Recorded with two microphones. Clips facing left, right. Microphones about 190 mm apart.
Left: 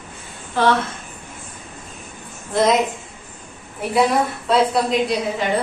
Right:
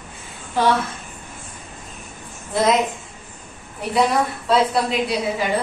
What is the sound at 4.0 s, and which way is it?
A woman's voice, centre (ahead or behind).